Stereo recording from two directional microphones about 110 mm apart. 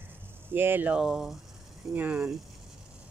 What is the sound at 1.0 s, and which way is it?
Speech, 5° right (ahead or behind).